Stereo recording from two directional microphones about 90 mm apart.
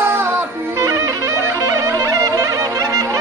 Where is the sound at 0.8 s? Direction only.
40° right (ahead or behind).